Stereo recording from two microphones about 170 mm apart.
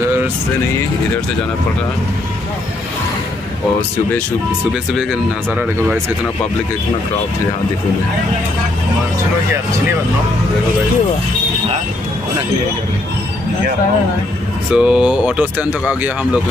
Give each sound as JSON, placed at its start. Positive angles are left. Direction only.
{"t": 0.0, "sound": "music", "side_deg": -15}
{"t": 14.7, "sound": "speech", "side_deg": -5}